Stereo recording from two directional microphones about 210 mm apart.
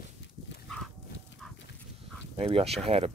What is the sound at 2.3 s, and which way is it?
Speech, 30° right (ahead or behind).